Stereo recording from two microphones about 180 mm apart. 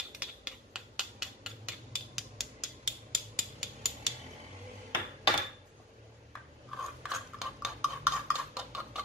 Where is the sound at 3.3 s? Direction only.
Centre (ahead or behind).